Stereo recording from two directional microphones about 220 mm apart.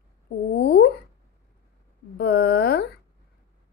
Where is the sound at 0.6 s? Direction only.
50° left (ahead or behind).